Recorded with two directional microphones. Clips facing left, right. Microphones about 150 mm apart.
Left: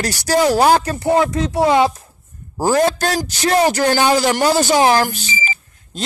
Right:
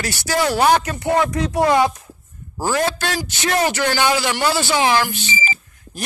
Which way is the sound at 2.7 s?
40° left (ahead or behind).